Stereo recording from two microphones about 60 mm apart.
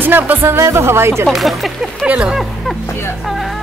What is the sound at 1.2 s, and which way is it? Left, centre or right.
Speech, centre.